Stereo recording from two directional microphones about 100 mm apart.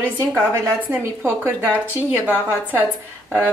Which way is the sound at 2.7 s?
20° right (ahead or behind).